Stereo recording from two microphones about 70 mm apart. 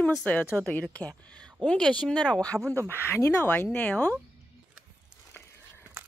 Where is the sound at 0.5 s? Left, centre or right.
Left.